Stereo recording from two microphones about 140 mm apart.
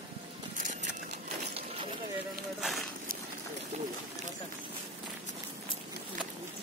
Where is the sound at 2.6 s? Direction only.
Centre (ahead or behind).